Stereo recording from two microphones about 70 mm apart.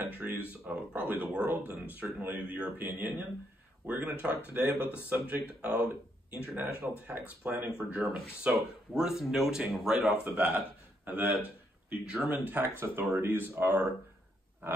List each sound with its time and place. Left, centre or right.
0.0 s a sound: right
0.7 s speech: centre
8.0 s speech: right
8.5 s speech: centre
10.3 s speech: right
11.9 s speech: centre; by 13.8 s right